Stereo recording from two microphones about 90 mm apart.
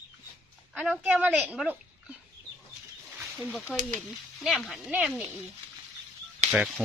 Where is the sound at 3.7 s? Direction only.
Centre (ahead or behind).